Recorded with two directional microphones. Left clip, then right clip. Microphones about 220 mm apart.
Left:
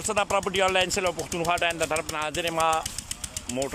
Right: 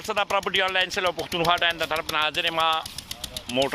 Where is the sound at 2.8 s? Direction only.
20° right (ahead or behind).